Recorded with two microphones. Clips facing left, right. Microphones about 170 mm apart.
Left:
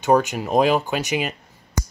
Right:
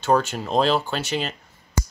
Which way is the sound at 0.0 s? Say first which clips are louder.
Left 3 dB; 15° left (ahead or behind).